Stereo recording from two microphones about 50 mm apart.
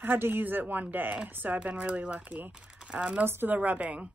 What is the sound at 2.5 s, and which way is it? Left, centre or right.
Crumpling, centre.